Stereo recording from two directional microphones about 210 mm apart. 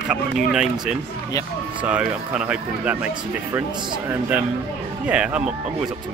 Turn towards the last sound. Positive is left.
turn(degrees=-5)  # may be behind; listen again after turning